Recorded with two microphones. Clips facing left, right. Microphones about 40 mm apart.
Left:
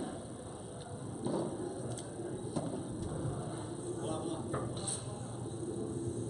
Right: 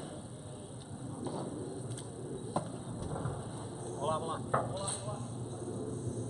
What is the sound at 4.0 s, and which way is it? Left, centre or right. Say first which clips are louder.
Vehicle: right 5 dB; right.